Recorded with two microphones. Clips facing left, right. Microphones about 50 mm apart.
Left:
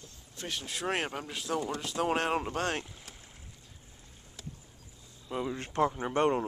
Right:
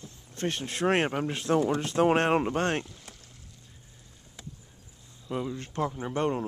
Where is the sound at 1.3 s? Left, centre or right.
Right.